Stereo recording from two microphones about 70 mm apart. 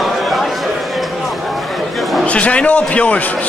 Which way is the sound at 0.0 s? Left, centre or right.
Centre.